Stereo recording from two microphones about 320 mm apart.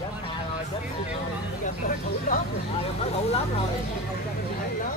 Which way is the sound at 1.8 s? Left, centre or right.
Left.